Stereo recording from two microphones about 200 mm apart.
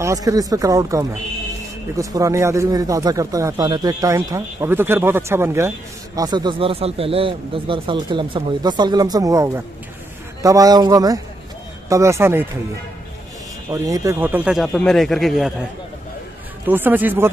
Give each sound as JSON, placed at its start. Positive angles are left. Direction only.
{"t": 0.0, "sound": "a man's voice", "side_deg": -15}
{"t": 13.7, "sound": "speech", "side_deg": -15}
{"t": 16.6, "sound": "a man's voice", "side_deg": -10}